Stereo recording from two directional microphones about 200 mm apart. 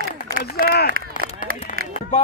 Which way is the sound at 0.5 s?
50° left (ahead or behind).